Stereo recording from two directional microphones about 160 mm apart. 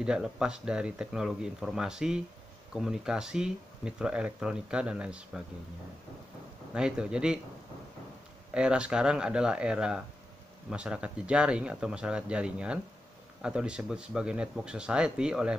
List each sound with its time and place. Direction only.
0.0 s speech: 5° right (ahead or behind)
6.7 s speech: 5° right (ahead or behind)
8.5 s speech: 5° right (ahead or behind)